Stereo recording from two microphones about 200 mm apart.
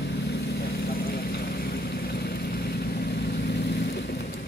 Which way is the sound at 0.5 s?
50° left (ahead or behind).